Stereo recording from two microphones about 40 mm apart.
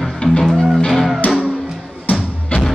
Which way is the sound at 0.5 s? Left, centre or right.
Centre.